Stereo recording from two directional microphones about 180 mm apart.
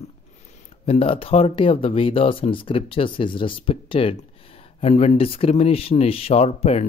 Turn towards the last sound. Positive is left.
turn(degrees=35)  # may be behind; listen again after turning